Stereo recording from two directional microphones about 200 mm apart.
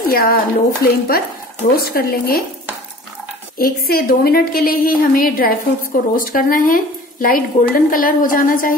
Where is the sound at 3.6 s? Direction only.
45° left (ahead or behind).